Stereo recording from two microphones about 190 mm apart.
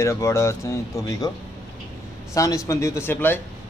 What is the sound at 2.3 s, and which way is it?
Speech, 15° left (ahead or behind).